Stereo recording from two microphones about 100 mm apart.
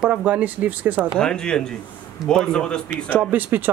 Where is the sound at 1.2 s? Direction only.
10° left (ahead or behind).